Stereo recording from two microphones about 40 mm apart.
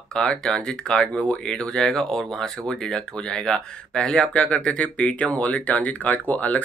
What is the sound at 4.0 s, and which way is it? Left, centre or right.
Speech, left.